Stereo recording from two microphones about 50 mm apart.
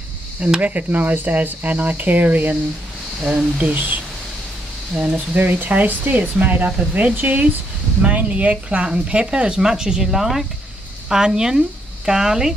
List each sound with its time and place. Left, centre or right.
0.6 s speech: right
3.3 s speech: right
3.7 s speech: right; by 12.5 s centre